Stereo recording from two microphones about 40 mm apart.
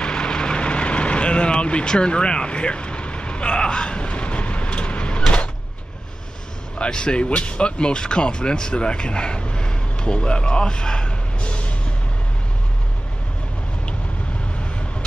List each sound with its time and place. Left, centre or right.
0.0 s vehicle: left
6.8 s speech: left